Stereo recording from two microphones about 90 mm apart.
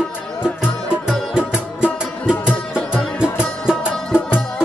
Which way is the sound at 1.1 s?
10° right (ahead or behind).